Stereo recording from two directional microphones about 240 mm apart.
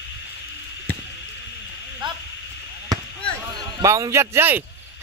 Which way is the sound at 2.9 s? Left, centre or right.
Centre.